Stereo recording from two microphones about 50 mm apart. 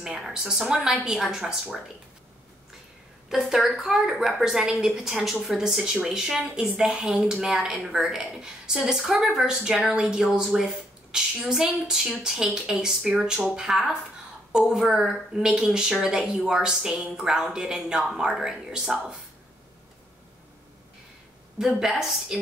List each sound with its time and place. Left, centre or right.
0.0 s a woman's voice: centre
3.3 s a woman's voice: centre
21.5 s a woman's voice: centre